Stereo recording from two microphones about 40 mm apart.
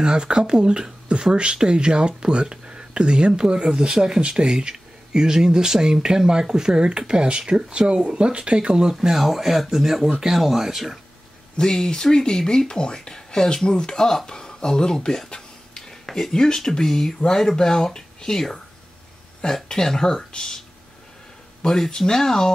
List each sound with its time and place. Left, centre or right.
0.0 s speech: right
9.0 s speech: centre
11.5 s speech: centre
15.2 s a sound: left
16.1 s speech: centre
21.6 s speech: centre